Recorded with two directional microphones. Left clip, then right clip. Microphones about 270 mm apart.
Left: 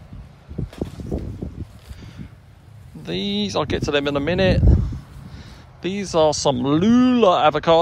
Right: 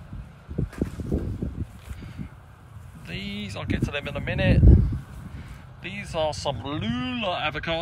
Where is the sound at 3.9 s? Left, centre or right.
Left.